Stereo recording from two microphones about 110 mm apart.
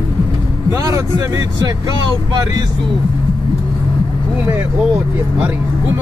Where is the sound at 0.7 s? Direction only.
30° right (ahead or behind).